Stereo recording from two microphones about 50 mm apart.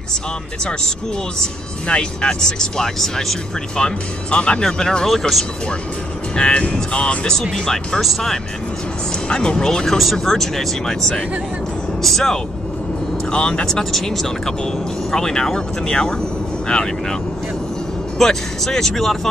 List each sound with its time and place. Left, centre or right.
1.4 s speech: centre
3.7 s speech: centre
6.3 s speech: centre
7.5 s speech: centre
9.3 s speech: centre
13.3 s speech: left
13.7 s speech: centre
18.2 s speech: centre